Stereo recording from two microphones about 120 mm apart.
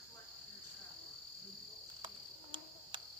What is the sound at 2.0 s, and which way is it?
Cricket, 40° right (ahead or behind).